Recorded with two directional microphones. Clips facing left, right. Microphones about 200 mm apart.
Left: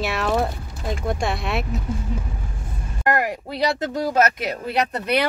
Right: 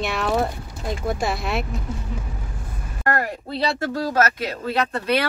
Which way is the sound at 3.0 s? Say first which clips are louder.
Left 2 dB; 15° left (ahead or behind).